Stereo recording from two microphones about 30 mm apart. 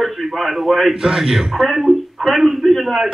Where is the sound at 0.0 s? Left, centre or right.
Centre.